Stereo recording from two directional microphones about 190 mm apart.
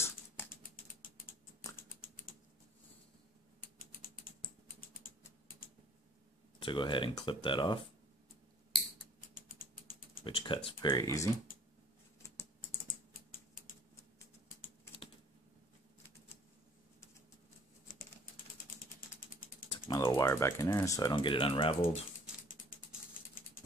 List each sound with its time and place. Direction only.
1.8 s typing: 50° left (ahead or behind)
6.6 s speech: 25° left (ahead or behind)
9.3 s typing: 50° left (ahead or behind)
10.2 s a sound: 25° left (ahead or behind)
10.8 s speech: 20° left (ahead or behind)
12.8 s typing: 50° left (ahead or behind)
18.8 s ratchet: 50° left (ahead or behind)
19.9 s speech: 15° left (ahead or behind)